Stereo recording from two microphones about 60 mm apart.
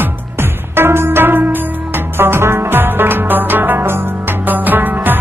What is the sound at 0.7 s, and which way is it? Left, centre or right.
Music, right.